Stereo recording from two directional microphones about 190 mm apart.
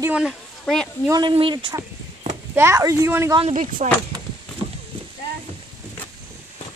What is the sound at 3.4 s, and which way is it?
Speech, 40° right (ahead or behind).